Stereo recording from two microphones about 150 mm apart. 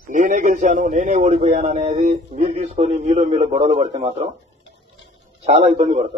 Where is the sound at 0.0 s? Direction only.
55° right (ahead or behind).